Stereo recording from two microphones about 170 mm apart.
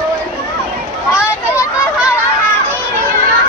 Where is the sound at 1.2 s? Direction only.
15° left (ahead or behind).